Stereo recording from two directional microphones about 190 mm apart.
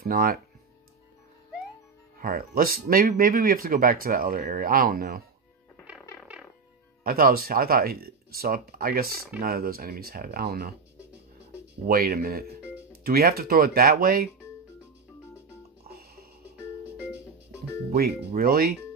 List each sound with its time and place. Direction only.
0.0 s speech: 55° right (ahead or behind)
2.1 s speech: 50° right (ahead or behind)
7.0 s speech: 50° right (ahead or behind)
11.9 s speech: 50° right (ahead or behind)
15.9 s music: 55° right (ahead or behind)
16.8 s music: 10° right (ahead or behind)
17.9 s speech: 50° right (ahead or behind)